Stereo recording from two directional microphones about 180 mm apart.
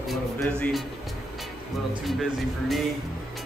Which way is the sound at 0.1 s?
5° left (ahead or behind).